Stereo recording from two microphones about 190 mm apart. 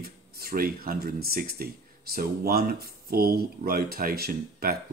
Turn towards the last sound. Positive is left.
turn(degrees=-55)  # may be behind; listen again after turning